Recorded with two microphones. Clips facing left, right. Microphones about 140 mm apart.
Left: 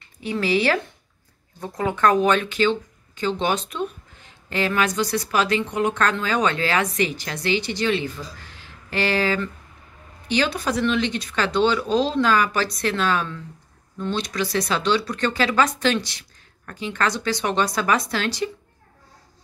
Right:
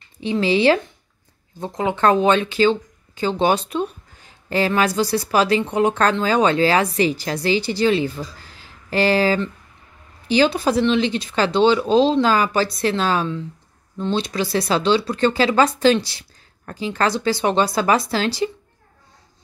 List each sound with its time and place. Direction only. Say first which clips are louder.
0.2 s speech: right 4 dB; 25° right (ahead or behind)